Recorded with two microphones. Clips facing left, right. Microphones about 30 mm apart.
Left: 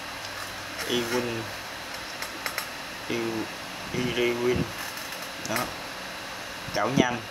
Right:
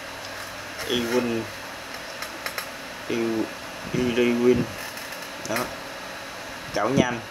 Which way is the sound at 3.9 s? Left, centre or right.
Centre.